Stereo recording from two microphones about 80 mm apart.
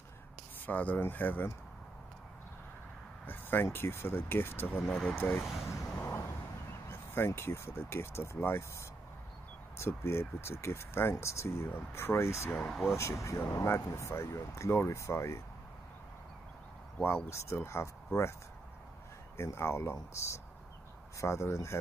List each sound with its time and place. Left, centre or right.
0.7 s speech: left
3.3 s a sound: left
3.6 s speech: left
5.4 s speech: centre
6.0 s vehicle: left
6.9 s speech: left
12.5 s speech: centre
12.9 s speech: left
17.0 s speech: left
19.3 s speech: left